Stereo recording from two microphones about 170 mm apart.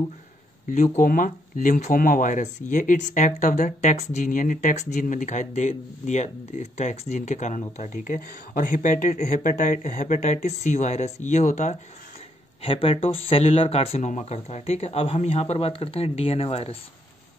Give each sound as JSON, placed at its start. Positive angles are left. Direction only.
{"t": 0.9, "sound": "speech", "side_deg": 50}
{"t": 12.6, "sound": "speech", "side_deg": 30}